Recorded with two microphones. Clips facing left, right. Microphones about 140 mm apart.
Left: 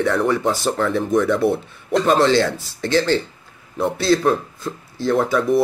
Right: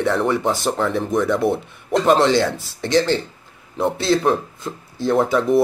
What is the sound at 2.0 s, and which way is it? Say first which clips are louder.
Speech: right 1 dB; 20° right (ahead or behind).